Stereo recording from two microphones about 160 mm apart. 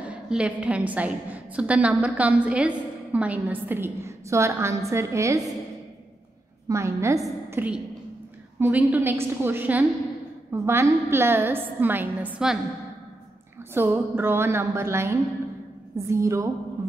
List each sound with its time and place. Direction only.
0.0 s a woman's voice: 5° right (ahead or behind)
6.7 s a woman's voice: 20° right (ahead or behind)
13.7 s a woman's voice: 15° right (ahead or behind)